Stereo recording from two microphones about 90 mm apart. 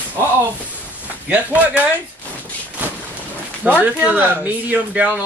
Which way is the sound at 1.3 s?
15° right (ahead or behind).